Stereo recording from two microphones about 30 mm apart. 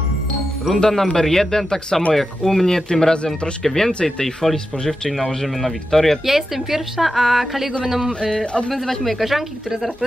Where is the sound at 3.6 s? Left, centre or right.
Centre.